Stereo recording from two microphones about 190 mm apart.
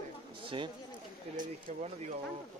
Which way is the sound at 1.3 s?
40° right (ahead or behind).